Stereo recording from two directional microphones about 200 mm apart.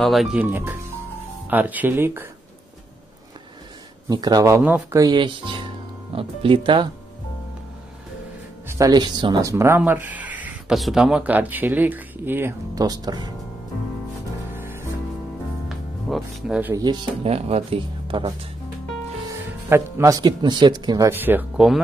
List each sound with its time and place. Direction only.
0.0 s speech: centre (ahead or behind)
4.1 s speech: 20° right (ahead or behind)
5.0 s speech: 20° right (ahead or behind)
8.6 s speech: 15° right (ahead or behind)
14.5 s music: 10° right (ahead or behind)
16.1 s speech: 5° right (ahead or behind)
17.2 s speech: 30° right (ahead or behind); by 21.8 s 5° right (ahead or behind)